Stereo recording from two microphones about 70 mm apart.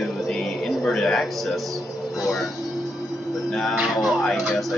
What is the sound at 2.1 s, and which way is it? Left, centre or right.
Music, left.